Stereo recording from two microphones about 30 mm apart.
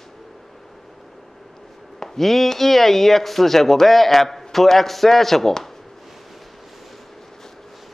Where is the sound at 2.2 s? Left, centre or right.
Centre.